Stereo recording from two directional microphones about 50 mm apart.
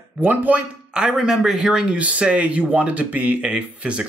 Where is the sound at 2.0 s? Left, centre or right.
Right.